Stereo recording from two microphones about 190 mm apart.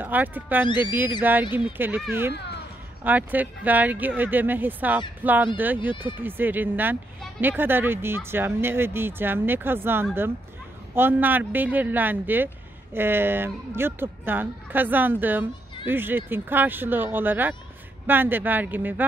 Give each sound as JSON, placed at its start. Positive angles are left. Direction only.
{"t": 0.0, "sound": "speech", "side_deg": -10}
{"t": 0.7, "sound": "speech", "side_deg": 25}
{"t": 1.5, "sound": "speech", "side_deg": -10}
{"t": 2.3, "sound": "a sound", "side_deg": 60}
{"t": 3.0, "sound": "speech", "side_deg": -10}